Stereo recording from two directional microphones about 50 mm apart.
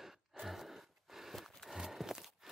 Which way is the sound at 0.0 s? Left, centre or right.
Centre.